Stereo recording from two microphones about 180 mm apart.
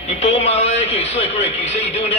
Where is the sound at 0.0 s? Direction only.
35° left (ahead or behind).